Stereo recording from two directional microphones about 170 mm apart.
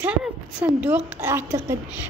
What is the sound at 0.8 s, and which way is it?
Speech, 10° right (ahead or behind).